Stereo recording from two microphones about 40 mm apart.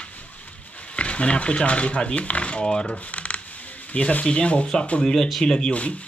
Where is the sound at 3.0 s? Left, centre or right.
Left.